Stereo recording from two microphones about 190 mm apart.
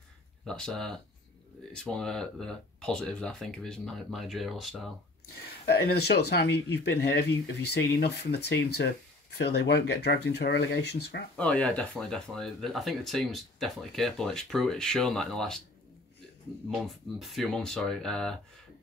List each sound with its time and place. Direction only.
0.5 s speech: 5° left (ahead or behind)
5.7 s speech: 55° left (ahead or behind)
11.3 s speech: 5° left (ahead or behind)
16.8 s speech: centre (ahead or behind)